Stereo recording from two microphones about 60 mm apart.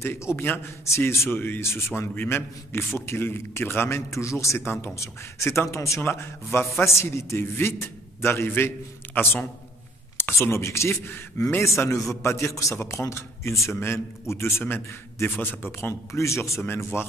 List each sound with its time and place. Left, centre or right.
0.0 s a man's voice: left
1.3 s a man's voice: left
1.6 s a man's voice: left
4.1 s a man's voice: left
6.1 s a man's voice: left
14.4 s a man's voice: left
15.9 s speech: left
16.6 s a man's voice: left